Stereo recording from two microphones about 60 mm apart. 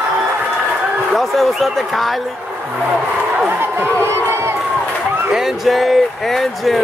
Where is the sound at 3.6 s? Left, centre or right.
Right.